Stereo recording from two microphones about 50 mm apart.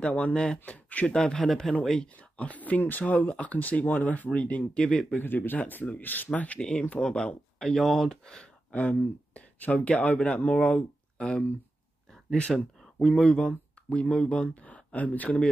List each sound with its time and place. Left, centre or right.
0.0 s speech: left
1.1 s speech: centre
2.4 s speech: left
5.2 s speech: left
7.0 s speech: centre
7.5 s speech: centre
8.7 s speech: left
13.9 s speech: left